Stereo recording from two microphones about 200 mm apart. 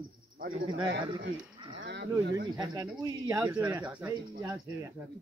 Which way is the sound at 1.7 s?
60° right (ahead or behind).